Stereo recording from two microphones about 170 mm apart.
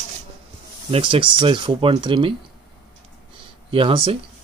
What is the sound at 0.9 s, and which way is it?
Speech, 30° right (ahead or behind).